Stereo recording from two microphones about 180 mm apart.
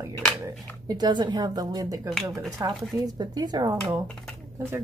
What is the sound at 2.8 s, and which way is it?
Speech, centre (ahead or behind).